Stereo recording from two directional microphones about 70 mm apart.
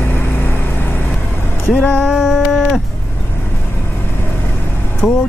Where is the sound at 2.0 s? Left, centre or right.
Centre.